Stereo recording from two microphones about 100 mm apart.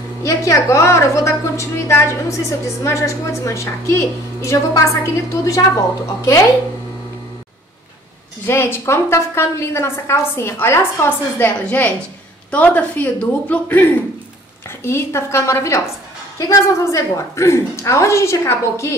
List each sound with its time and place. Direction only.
0.2 s a woman's voice: 30° left (ahead or behind)
8.5 s a woman's voice: 25° left (ahead or behind)